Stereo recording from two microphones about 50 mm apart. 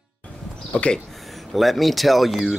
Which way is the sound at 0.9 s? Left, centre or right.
Left.